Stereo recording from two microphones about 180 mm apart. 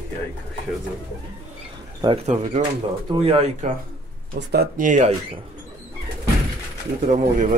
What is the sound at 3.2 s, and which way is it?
Speech, 35° right (ahead or behind).